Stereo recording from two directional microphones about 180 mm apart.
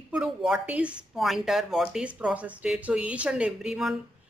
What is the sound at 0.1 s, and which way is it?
A woman's voice, 5° right (ahead or behind).